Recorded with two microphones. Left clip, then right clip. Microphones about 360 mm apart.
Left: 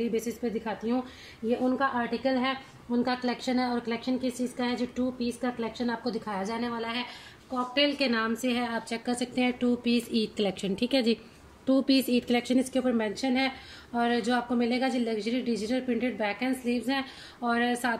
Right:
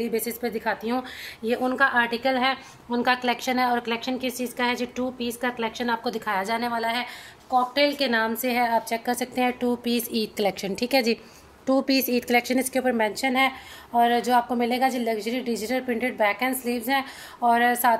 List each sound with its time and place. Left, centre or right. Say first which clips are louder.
0.0 s speech: right 3 dB; right
2.9 s a woman's voice: right 6 dB; right
3.4 s a woman's voice: right 6 dB; right